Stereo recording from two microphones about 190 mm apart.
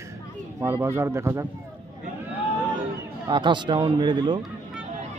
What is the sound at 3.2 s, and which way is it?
Speech, 25° right (ahead or behind).